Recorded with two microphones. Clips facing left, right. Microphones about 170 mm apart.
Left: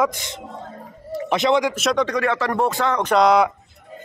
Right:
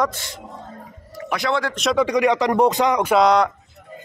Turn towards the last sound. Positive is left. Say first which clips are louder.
# even
turn(degrees=0)  # may be behind; listen again after turning